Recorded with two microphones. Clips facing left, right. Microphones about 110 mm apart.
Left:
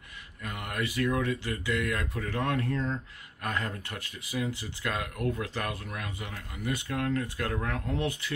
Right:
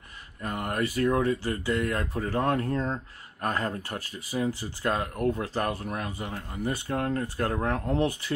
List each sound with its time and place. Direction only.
0.4 s speech: 35° right (ahead or behind)